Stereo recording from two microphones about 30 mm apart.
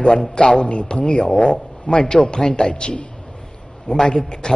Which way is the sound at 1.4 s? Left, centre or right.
Centre.